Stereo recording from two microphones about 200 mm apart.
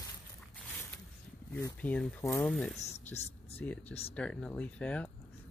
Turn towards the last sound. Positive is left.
turn(degrees=5)  # may be behind; listen again after turning